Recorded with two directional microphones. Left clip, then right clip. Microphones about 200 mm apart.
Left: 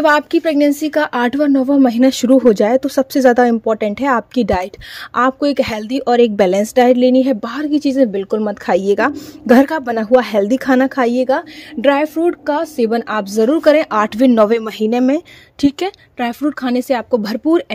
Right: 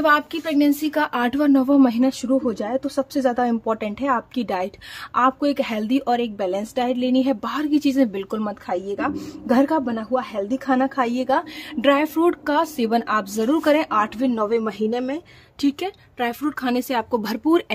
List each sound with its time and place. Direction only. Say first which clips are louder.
0.0 s a woman's voice: left 6 dB; 30° left (ahead or behind)
2.0 s speech: left 11 dB; 35° left (ahead or behind)
3.6 s a woman's voice: left 7 dB; 20° left (ahead or behind)
8.6 s a woman's voice: left 12 dB; 40° left (ahead or behind)
16.2 s a woman's voice: left 5 dB; 20° left (ahead or behind)